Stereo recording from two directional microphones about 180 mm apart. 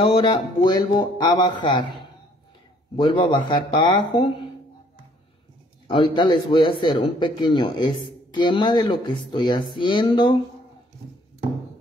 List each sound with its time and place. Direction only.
0.0 s a man's voice: 30° left (ahead or behind)
5.9 s a man's voice: 25° left (ahead or behind)